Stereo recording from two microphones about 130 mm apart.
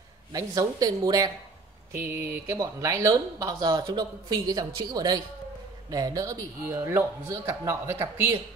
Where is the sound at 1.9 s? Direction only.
15° right (ahead or behind).